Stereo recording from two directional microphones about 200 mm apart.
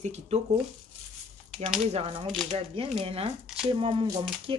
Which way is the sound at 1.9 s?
30° right (ahead or behind).